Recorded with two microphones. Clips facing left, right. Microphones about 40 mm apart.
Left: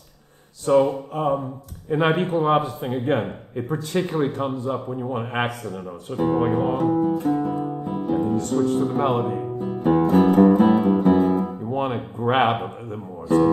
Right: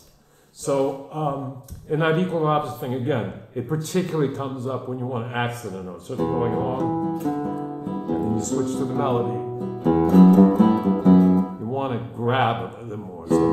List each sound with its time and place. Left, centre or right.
0.7 s speech: left
4.9 s speech: left
5.7 s speech: left
9.8 s music: left
11.7 s speech: left
12.6 s speech: left